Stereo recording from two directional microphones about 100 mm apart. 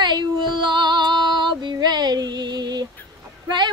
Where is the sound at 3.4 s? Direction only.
50° right (ahead or behind).